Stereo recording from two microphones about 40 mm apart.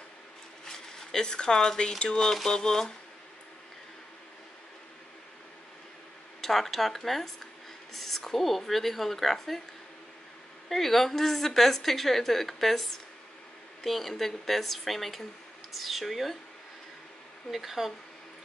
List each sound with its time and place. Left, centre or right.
0.7 s a woman's voice: centre
6.4 s a woman's voice: centre
10.7 s a woman's voice: centre
17.5 s a woman's voice: centre